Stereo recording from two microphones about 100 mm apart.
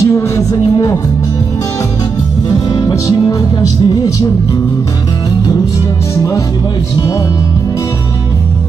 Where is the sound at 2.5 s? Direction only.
35° left (ahead or behind).